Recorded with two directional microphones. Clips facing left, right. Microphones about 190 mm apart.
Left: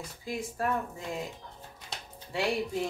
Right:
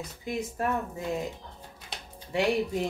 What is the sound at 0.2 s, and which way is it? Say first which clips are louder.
Speech: right 2 dB; 20° right (ahead or behind).